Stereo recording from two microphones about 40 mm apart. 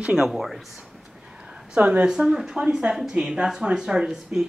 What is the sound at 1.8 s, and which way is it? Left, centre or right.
Speech, right.